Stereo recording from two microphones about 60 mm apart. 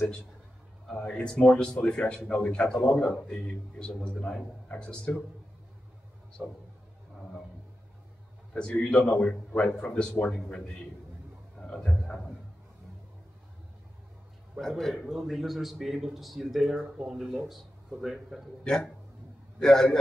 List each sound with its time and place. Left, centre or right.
0.9 s a man's voice: centre
6.4 s speech: centre
8.5 s a man's voice: centre
10.2 s speech: centre
11.5 s a man's voice: centre
14.6 s speech: centre
18.6 s speech: centre